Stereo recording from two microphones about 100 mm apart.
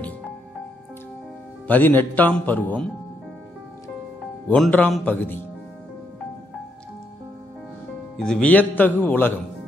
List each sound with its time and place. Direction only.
1.7 s a man's voice: 20° left (ahead or behind)
4.5 s a man's voice: 15° left (ahead or behind)
8.2 s a man's voice: 10° left (ahead or behind)